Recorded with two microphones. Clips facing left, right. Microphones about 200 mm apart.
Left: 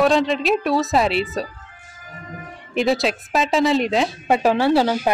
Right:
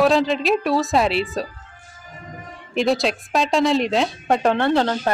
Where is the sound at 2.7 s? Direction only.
Centre (ahead or behind).